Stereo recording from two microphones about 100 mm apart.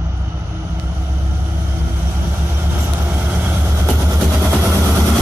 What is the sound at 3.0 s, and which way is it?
Vehicle, 20° right (ahead or behind).